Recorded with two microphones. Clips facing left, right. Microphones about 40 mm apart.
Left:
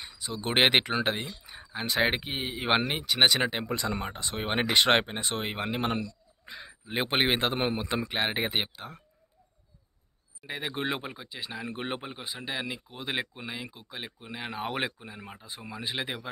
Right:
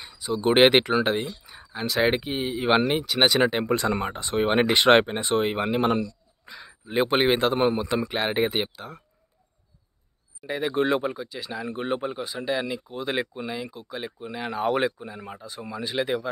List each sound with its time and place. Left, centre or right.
0.0 s speech: centre
3.6 s speech: right
4.1 s speech: centre
6.4 s speech: left
8.1 s speech: centre
10.4 s speech: centre
11.7 s speech: left
12.0 s speech: centre